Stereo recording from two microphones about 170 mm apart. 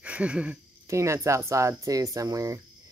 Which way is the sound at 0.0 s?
5° right (ahead or behind).